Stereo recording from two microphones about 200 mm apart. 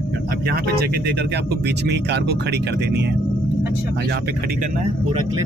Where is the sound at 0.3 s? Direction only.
50° right (ahead or behind).